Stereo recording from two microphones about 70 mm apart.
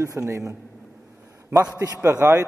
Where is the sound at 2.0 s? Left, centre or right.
Right.